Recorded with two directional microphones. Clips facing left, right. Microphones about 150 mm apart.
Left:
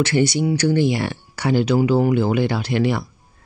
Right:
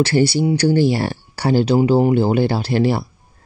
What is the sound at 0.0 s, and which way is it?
Speech, 30° right (ahead or behind).